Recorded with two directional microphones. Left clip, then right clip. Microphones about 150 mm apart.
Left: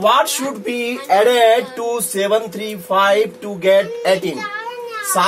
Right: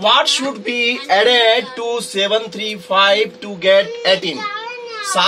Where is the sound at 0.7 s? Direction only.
20° left (ahead or behind).